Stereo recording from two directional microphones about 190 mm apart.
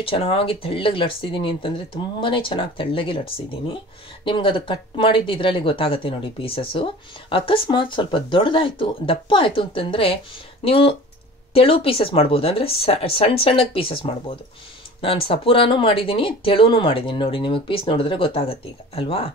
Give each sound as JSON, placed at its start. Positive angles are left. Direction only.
{"t": 0.0, "sound": "speech", "side_deg": 30}
{"t": 4.2, "sound": "speech", "side_deg": 25}